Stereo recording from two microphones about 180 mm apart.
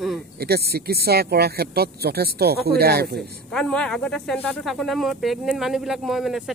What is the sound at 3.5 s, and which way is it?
Speech, 5° left (ahead or behind).